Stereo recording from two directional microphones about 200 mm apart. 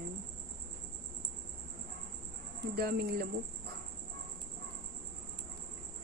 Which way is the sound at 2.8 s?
50° right (ahead or behind).